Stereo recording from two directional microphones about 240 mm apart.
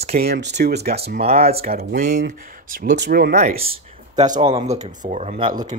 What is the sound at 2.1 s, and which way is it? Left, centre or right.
Speech, right.